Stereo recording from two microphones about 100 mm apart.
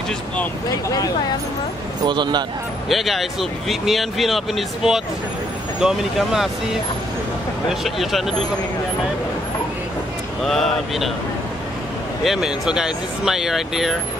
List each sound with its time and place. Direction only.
0.8 s speech: 35° left (ahead or behind)
2.0 s speech: 50° right (ahead or behind)
2.9 s speech: centre (ahead or behind)
7.8 s speech: centre (ahead or behind)
10.4 s speech: 5° left (ahead or behind)
12.2 s speech: 5° right (ahead or behind)